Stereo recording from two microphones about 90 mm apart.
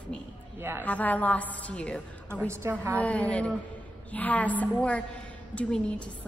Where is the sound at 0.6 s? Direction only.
25° right (ahead or behind).